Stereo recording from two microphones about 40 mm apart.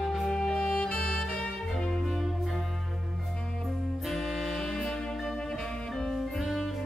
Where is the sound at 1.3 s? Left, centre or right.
Centre.